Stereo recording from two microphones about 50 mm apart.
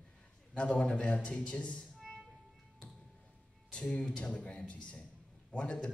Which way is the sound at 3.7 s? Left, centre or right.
Left.